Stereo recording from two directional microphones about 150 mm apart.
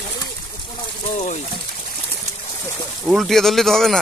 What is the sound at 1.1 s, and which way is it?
Speech, 50° left (ahead or behind).